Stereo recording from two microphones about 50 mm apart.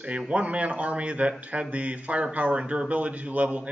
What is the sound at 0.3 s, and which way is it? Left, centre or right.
Speech, right.